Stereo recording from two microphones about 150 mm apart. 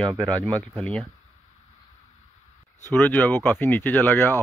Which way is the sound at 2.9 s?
10° left (ahead or behind).